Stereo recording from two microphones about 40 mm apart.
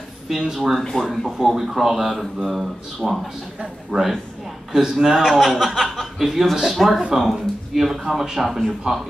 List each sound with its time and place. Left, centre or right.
0.3 s speech: centre
3.9 s speech: centre
4.7 s a man's voice: centre
8.9 s a man's voice: centre